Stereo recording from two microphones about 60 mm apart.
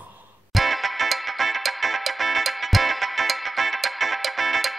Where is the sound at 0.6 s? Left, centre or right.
Centre.